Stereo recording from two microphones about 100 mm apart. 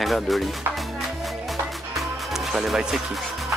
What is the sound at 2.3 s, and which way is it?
Speech, 5° right (ahead or behind).